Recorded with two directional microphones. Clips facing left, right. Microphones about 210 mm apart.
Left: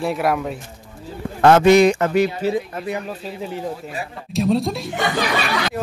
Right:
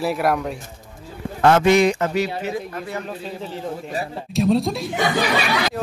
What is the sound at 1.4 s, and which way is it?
Speech, 40° left (ahead or behind).